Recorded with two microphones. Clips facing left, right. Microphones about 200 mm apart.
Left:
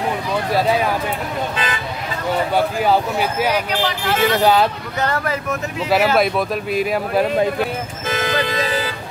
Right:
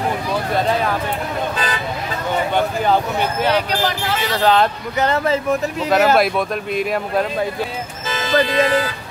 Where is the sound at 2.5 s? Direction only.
5° left (ahead or behind).